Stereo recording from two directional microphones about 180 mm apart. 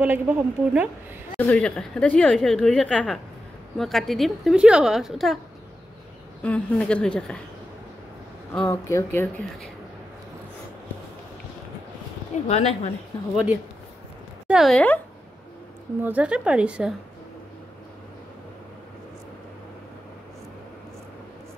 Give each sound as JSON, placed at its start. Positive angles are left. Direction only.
{"t": 0.0, "sound": "a woman's voice", "side_deg": -10}
{"t": 1.4, "sound": "speech", "side_deg": 5}
{"t": 6.4, "sound": "speech", "side_deg": 5}
{"t": 8.5, "sound": "a woman's voice", "side_deg": 15}
{"t": 12.4, "sound": "speech", "side_deg": 35}
{"t": 14.5, "sound": "speech", "side_deg": 0}
{"t": 16.0, "sound": "a woman's voice", "side_deg": -10}